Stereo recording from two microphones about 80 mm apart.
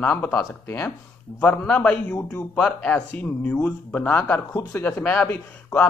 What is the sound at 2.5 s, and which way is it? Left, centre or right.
A man's voice, centre.